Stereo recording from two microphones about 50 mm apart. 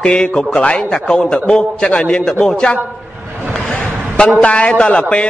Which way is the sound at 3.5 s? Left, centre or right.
Centre.